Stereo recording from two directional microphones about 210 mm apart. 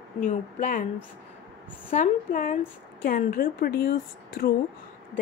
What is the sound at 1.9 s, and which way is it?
Speech, 40° left (ahead or behind).